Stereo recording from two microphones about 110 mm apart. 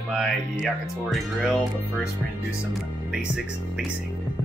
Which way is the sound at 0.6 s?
5° right (ahead or behind).